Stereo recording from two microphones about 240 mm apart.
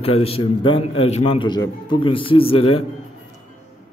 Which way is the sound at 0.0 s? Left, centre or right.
Left.